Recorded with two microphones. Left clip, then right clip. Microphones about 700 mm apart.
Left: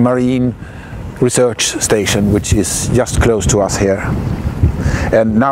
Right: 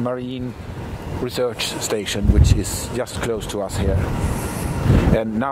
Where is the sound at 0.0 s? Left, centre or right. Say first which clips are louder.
Left 11 dB; left.